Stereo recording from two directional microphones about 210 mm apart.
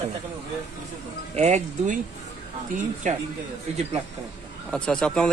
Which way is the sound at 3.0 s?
35° right (ahead or behind).